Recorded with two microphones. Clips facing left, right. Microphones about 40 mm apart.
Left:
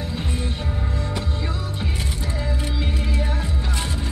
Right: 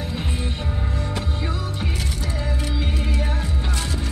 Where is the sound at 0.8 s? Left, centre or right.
Right.